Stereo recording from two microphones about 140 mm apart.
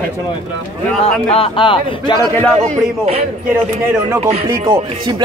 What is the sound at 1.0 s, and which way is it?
A man's voice, 45° left (ahead or behind).